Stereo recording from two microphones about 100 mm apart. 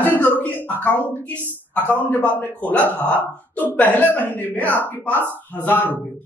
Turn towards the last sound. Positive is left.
turn(degrees=20)  # may be behind; listen again after turning